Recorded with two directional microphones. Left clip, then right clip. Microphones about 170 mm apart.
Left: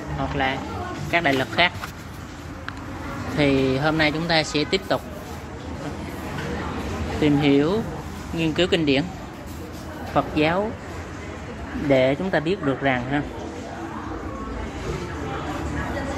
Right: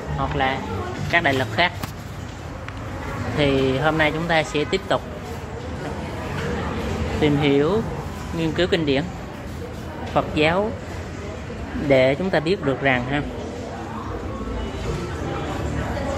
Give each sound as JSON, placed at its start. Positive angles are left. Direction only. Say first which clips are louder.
{"t": 1.1, "sound": "speech", "louder": "right 1 dB", "side_deg": 35}
{"t": 3.3, "sound": "speech", "louder": "right 1 dB", "side_deg": 30}
{"t": 7.2, "sound": "speech", "louder": "even", "side_deg": 35}
{"t": 10.1, "sound": "speech", "louder": "right 1 dB", "side_deg": 25}
{"t": 11.9, "sound": "speech", "louder": "right 2 dB", "side_deg": 15}